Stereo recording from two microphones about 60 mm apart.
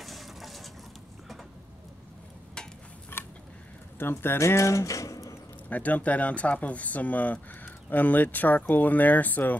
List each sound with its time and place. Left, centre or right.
0.0 s vehicle: centre
3.1 s a sound: left
4.0 s speech: left
4.4 s speech: left
5.7 s speech: left